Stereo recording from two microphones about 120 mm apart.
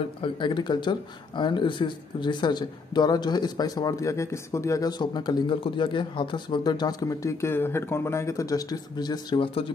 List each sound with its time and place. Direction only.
0.2 s speech: 40° left (ahead or behind)